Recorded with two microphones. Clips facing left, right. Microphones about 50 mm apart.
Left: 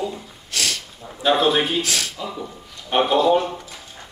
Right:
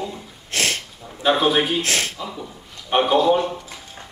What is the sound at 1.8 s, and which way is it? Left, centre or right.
Speech, right.